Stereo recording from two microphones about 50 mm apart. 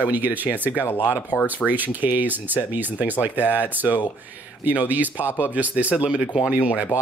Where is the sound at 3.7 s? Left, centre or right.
Right.